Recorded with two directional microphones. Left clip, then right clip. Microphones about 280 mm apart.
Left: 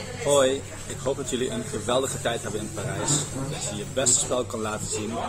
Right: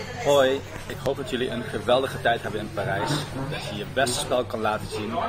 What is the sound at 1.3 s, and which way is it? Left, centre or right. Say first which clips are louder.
A man's voice: right 1 dB; centre.